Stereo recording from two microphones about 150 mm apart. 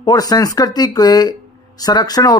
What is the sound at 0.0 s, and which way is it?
Speech, 25° left (ahead or behind).